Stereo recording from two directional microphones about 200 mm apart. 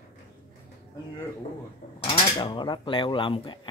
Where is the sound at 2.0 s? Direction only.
25° left (ahead or behind).